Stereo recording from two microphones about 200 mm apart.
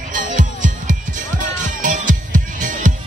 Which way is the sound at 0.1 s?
40° right (ahead or behind).